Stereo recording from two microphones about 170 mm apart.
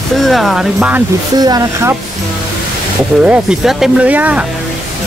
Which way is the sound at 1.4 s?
20° right (ahead or behind).